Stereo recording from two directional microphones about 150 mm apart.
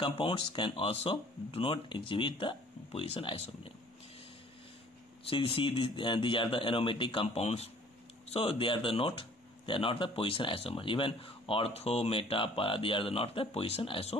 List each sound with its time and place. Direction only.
0.0 s speech: 35° left (ahead or behind)
5.2 s speech: 35° left (ahead or behind)